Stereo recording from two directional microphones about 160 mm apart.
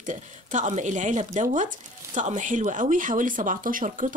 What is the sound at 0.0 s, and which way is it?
Speech, 50° right (ahead or behind).